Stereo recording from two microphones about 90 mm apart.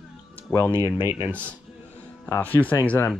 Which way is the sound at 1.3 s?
15° left (ahead or behind).